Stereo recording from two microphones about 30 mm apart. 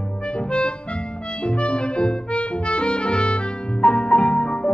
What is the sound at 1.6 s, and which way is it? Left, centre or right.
Music, left.